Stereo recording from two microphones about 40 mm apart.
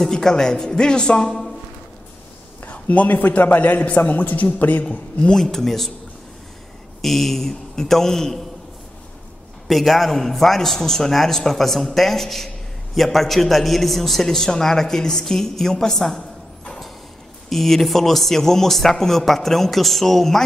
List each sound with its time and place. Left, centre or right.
0.1 s a man's voice: centre
2.6 s a man's voice: left
5.3 s a man's voice: centre
7.0 s a man's voice: centre
9.7 s a man's voice: centre
17.5 s a man's voice: centre